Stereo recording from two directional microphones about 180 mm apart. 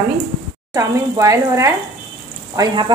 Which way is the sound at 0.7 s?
20° right (ahead or behind).